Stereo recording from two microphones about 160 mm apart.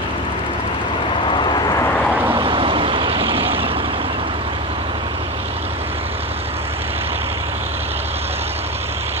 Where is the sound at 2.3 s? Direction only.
35° right (ahead or behind).